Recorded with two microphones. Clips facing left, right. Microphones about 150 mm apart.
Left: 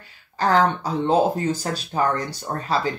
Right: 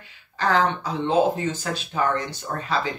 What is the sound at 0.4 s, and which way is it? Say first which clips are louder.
Speech: left 3 dB; 35° left (ahead or behind).